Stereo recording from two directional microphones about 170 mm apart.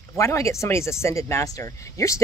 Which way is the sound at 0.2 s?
15° left (ahead or behind).